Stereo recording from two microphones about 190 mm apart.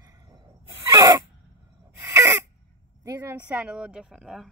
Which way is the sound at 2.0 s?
15° right (ahead or behind).